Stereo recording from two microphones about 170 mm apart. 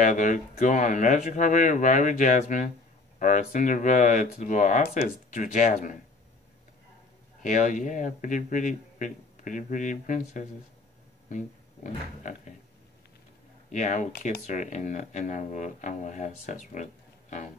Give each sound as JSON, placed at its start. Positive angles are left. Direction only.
{"t": 0.0, "sound": "speech", "side_deg": 50}
{"t": 7.4, "sound": "speech", "side_deg": 50}
{"t": 13.7, "sound": "speech", "side_deg": 45}